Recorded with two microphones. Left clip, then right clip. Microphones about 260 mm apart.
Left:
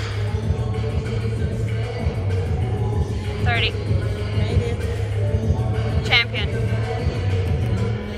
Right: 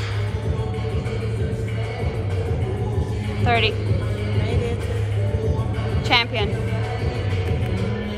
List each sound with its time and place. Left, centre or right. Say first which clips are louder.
3.4 s music: right 3 dB; centre
6.0 s vehicle: even; centre